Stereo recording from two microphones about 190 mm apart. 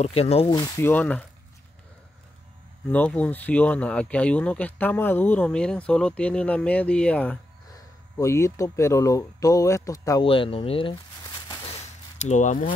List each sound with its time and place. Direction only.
0.0 s speech: 35° left (ahead or behind); by 1.2 s 10° left (ahead or behind)
2.9 s speech: 5° left (ahead or behind)
10.2 s speech: 30° left (ahead or behind)
12.2 s speech: 40° left (ahead or behind)